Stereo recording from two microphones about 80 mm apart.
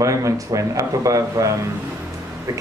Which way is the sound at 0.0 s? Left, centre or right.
Right.